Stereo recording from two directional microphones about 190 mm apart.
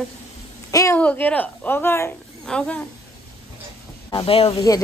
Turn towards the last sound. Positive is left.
turn(degrees=20)  # may be behind; listen again after turning